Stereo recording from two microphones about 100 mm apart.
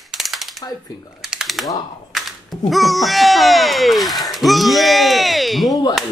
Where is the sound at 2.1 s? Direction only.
Centre (ahead or behind).